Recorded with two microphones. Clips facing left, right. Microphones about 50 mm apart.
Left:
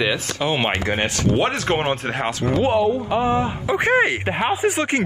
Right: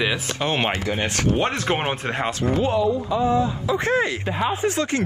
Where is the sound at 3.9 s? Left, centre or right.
Left.